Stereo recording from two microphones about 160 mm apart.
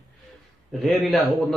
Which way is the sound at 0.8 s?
Centre (ahead or behind).